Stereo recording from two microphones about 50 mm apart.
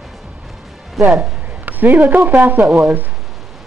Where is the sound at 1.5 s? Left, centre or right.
Right.